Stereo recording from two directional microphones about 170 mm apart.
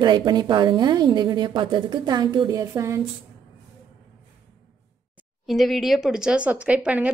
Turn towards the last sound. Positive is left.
turn(degrees=-5)  # may be behind; listen again after turning